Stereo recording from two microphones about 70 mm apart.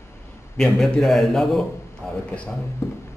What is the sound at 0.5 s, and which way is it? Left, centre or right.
A man's voice, centre.